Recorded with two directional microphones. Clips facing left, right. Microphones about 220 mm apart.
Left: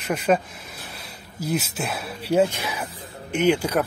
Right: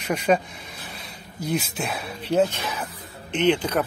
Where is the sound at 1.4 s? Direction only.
5° left (ahead or behind).